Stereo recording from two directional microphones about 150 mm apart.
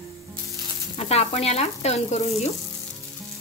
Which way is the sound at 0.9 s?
45° left (ahead or behind).